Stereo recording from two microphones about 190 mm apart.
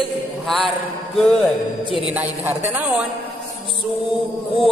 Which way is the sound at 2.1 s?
10° right (ahead or behind).